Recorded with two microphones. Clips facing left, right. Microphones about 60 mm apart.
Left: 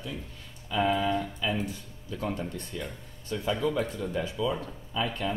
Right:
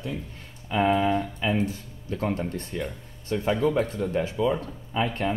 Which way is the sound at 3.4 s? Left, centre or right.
Right.